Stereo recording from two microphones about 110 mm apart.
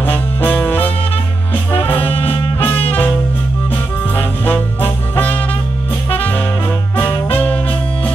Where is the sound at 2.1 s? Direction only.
55° left (ahead or behind).